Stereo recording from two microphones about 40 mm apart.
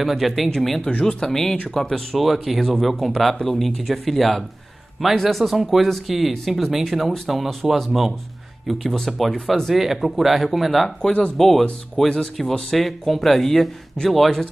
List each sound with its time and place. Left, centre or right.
0.0 s speech: centre
1.0 s speech: centre
2.1 s speech: centre
11.0 s speech: left
11.3 s speech: centre